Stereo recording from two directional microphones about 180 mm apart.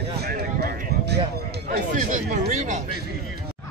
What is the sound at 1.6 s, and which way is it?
Speech, 45° right (ahead or behind).